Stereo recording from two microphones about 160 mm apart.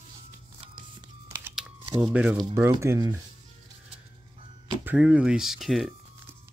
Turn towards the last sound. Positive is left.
turn(degrees=0)  # may be behind; listen again after turning